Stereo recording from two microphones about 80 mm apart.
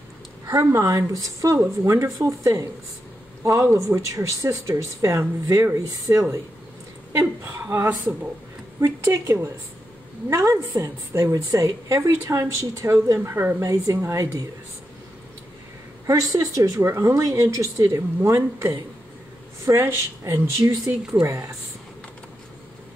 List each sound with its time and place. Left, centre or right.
0.5 s speech: right
3.7 s a woman's voice: right
16.1 s a woman's voice: right